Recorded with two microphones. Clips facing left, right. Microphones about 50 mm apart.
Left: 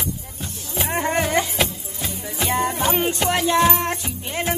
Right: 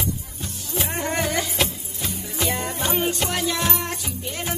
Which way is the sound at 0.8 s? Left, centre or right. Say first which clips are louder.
Left 4 dB; left.